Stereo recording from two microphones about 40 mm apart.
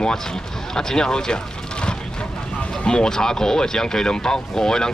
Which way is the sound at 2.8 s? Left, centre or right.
Centre.